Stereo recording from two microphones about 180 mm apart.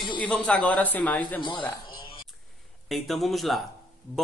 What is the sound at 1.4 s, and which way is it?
Speech, 25° left (ahead or behind).